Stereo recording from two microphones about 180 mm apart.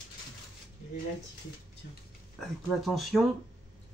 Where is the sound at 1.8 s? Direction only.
60° left (ahead or behind).